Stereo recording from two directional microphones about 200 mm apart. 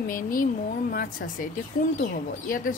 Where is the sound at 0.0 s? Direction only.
45° left (ahead or behind).